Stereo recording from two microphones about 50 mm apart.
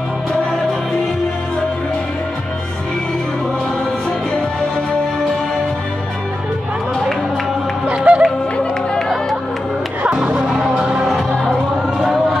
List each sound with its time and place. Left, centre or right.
7.9 s music: right
10.0 s music: centre